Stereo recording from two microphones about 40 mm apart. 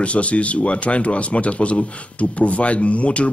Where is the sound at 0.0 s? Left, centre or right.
Left.